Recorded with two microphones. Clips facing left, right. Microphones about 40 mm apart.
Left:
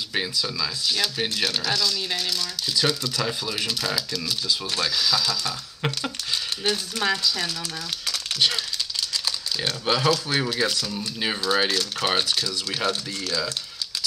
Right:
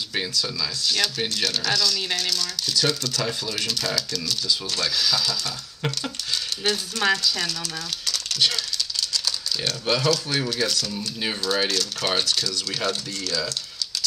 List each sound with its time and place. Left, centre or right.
0.3 s speech: centre
4.8 s speech: centre
5.4 s speech: centre
8.1 s a sound: left
9.1 s speech: left
10.9 s speech: centre